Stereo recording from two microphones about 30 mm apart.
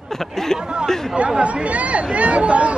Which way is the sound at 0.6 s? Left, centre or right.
Right.